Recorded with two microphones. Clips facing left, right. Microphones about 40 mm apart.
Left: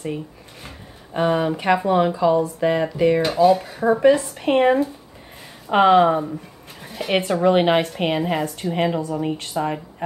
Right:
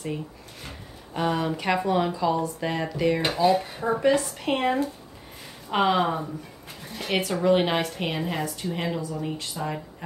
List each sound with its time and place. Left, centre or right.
0.0 s a woman's voice: centre
6.9 s a sound: centre
7.2 s a woman's voice: left